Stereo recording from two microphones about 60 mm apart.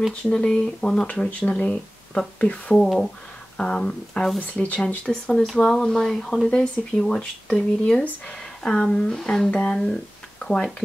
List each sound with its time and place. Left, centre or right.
0.1 s speech: centre